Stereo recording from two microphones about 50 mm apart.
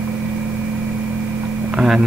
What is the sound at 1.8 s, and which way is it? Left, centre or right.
Speech, centre.